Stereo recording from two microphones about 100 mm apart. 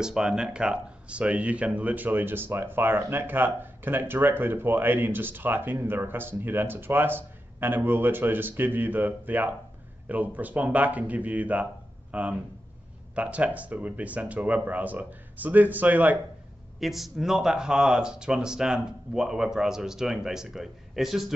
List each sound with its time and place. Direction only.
0.0 s speech: 5° right (ahead or behind)
16.8 s speech: centre (ahead or behind)